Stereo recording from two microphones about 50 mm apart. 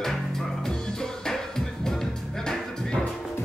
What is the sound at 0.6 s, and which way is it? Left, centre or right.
Music, centre.